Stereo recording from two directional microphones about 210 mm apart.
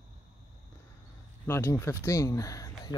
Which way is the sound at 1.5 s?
10° left (ahead or behind).